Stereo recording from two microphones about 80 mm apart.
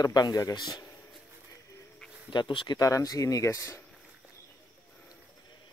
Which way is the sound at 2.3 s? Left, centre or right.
Left.